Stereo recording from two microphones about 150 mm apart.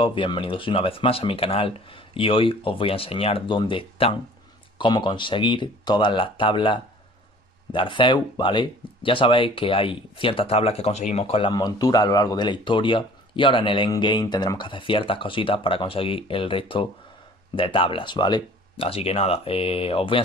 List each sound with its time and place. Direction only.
0.0 s speech: 35° left (ahead or behind)